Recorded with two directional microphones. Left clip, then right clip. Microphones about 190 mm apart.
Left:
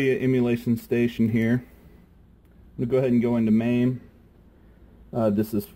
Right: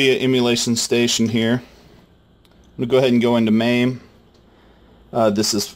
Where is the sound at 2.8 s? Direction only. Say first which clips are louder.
Right 7 dB; 20° right (ahead or behind).